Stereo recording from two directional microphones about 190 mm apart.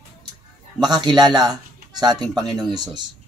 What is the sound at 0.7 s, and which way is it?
Speech, 20° right (ahead or behind).